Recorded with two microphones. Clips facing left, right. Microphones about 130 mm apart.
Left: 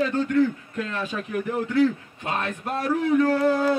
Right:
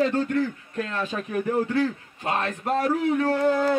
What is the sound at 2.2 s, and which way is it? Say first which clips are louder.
Speech: right 2 dB; 35° right (ahead or behind).